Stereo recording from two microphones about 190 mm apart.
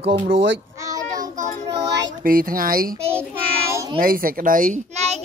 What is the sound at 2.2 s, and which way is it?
Speech, 50° right (ahead or behind).